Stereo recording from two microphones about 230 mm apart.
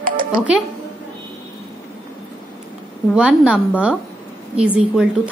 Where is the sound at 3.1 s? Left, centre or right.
Centre.